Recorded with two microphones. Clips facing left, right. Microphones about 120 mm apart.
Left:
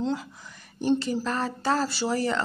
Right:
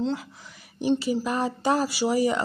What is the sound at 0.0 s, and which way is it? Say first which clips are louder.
A woman's voice: right 1 dB; centre (ahead or behind).